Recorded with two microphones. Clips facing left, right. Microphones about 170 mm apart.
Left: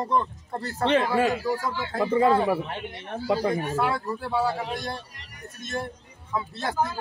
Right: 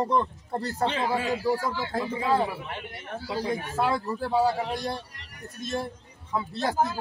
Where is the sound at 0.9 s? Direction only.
60° left (ahead or behind).